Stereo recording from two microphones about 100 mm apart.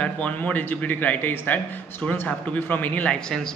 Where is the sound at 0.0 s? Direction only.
15° left (ahead or behind).